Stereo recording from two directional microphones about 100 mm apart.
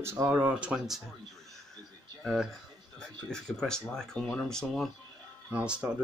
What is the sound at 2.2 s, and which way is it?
Speech, 5° left (ahead or behind).